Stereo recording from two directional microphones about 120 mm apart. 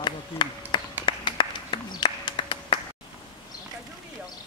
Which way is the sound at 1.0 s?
45° left (ahead or behind).